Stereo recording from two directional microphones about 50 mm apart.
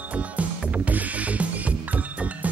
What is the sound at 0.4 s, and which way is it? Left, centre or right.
Music, right.